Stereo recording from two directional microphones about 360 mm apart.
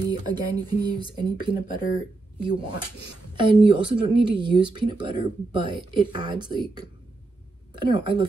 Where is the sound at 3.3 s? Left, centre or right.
Centre.